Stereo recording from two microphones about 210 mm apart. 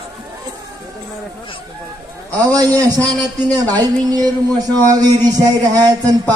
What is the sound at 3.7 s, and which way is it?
A man's voice, 20° right (ahead or behind).